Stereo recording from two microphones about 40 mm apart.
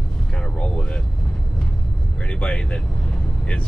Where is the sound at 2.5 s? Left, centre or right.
Left.